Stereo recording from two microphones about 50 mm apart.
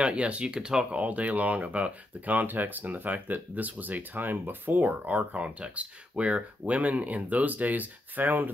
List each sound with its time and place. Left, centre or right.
0.0 s speech: right
0.9 s speech: right